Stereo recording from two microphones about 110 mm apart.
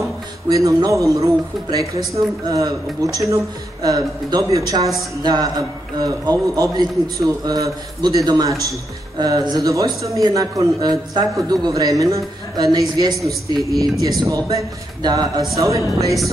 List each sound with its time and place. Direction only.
0.5 s speech: 30° right (ahead or behind)
13.2 s speech: centre (ahead or behind)
14.0 s speech: 30° right (ahead or behind)